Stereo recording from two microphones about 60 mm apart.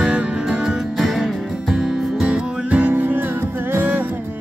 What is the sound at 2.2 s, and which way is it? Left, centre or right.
Music, right.